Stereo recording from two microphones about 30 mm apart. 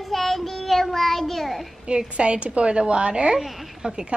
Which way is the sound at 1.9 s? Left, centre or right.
Right.